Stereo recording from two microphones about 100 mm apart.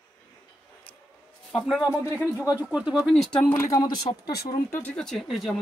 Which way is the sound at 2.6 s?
10° right (ahead or behind).